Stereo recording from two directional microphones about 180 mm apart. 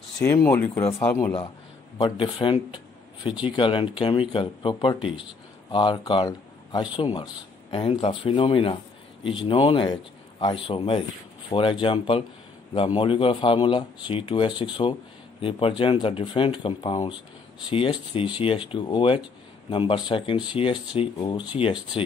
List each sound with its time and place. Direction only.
0.2 s speech: 15° left (ahead or behind)
2.0 s speech: 25° left (ahead or behind)